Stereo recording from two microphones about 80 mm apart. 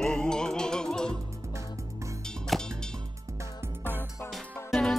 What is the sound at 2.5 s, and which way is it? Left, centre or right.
Music, centre.